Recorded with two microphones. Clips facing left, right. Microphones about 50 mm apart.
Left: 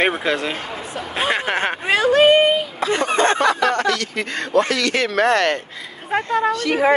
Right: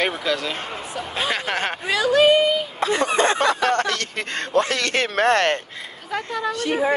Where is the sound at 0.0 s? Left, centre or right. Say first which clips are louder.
Left 4 dB; left.